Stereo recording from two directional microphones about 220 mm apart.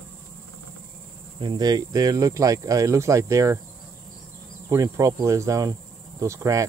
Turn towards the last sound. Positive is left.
turn(degrees=-15)  # may be behind; listen again after turning